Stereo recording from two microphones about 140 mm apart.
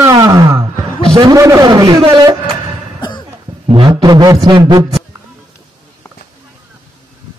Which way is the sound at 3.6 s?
40° right (ahead or behind).